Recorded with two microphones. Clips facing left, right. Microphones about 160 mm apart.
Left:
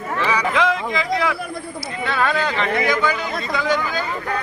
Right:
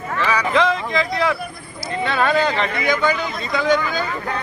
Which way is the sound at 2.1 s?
25° right (ahead or behind).